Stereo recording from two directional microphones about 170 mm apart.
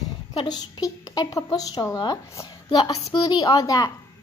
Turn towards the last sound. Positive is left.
turn(degrees=20)  # may be behind; listen again after turning